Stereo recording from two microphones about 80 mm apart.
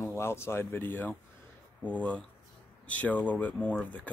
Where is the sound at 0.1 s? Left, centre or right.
Left.